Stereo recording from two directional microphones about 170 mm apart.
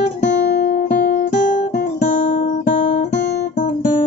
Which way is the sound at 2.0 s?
50° left (ahead or behind).